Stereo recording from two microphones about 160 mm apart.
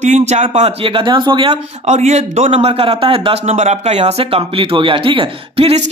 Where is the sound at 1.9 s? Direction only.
45° right (ahead or behind).